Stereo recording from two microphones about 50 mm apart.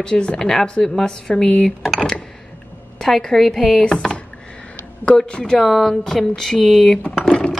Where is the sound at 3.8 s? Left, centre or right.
Left.